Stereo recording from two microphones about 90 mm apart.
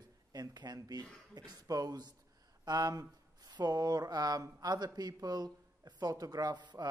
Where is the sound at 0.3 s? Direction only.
45° right (ahead or behind).